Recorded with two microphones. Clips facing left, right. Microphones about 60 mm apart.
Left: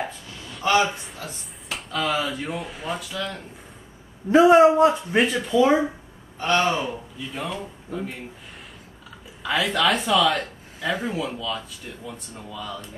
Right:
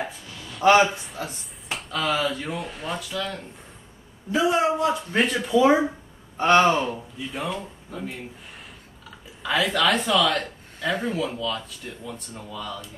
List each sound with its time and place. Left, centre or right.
1.2 s speech: centre
4.3 s a man's voice: left
5.1 s speech: centre
6.3 s a man's voice: right
6.7 s speech: centre
9.4 s speech: centre